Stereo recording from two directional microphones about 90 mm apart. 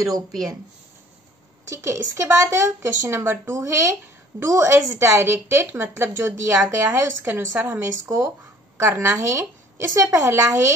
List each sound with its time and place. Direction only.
1.7 s a woman's voice: 30° right (ahead or behind)